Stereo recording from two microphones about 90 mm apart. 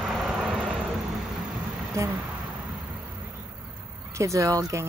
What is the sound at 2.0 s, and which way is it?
Speech, 35° right (ahead or behind).